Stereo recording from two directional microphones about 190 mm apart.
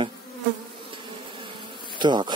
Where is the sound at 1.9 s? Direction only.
25° right (ahead or behind).